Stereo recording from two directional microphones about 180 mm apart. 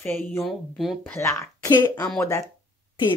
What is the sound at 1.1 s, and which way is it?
Speech, 15° left (ahead or behind).